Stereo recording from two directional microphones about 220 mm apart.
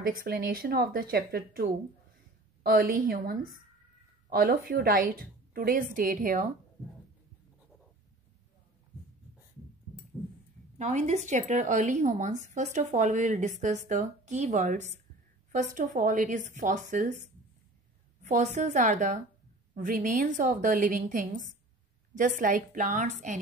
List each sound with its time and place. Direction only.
0.0 s a woman's voice: 40° right (ahead or behind)
10.8 s speech: 35° right (ahead or behind)
18.2 s speech: 30° right (ahead or behind)